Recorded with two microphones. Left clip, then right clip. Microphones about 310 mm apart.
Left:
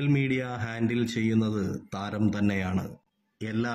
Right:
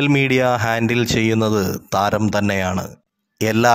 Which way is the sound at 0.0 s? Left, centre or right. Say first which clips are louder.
Right 13 dB; right.